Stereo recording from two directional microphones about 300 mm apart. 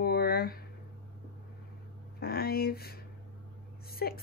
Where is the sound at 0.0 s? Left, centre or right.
Left.